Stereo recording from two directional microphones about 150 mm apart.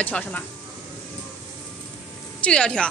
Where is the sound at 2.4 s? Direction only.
5° left (ahead or behind).